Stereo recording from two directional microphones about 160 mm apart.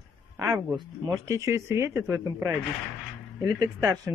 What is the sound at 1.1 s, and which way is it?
Speech, 15° right (ahead or behind).